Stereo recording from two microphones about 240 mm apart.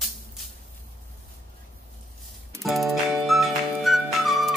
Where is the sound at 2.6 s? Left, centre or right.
Centre.